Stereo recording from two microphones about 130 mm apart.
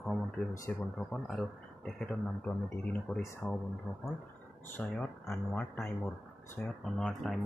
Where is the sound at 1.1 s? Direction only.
Centre (ahead or behind).